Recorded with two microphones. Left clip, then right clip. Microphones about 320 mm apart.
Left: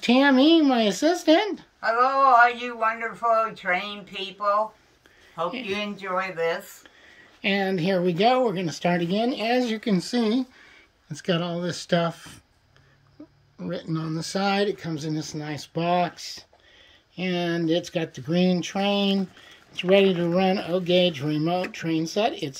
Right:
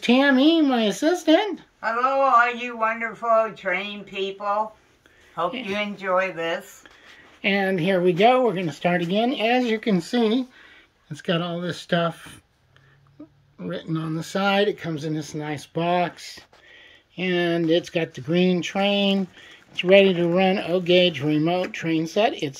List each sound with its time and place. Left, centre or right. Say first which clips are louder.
0.0 s speech: right 1 dB; centre
5.4 s speech: right 2 dB; centre
13.6 s speech: right 1 dB; centre